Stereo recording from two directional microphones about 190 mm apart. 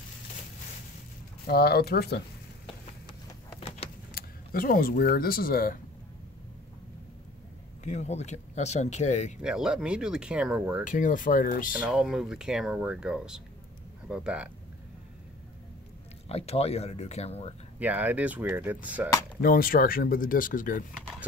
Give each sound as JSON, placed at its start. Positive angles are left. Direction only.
{"t": 1.5, "sound": "speech", "side_deg": 55}
{"t": 3.5, "sound": "vehicle", "side_deg": 35}
{"t": 4.1, "sound": "speech", "side_deg": 50}
{"t": 7.8, "sound": "speech", "side_deg": 35}
{"t": 9.4, "sound": "speech", "side_deg": -5}
{"t": 10.8, "sound": "speech", "side_deg": 45}
{"t": 11.9, "sound": "speech", "side_deg": -5}
{"t": 16.3, "sound": "speech", "side_deg": 30}
{"t": 17.7, "sound": "speech", "side_deg": -10}
{"t": 19.4, "sound": "speech", "side_deg": 50}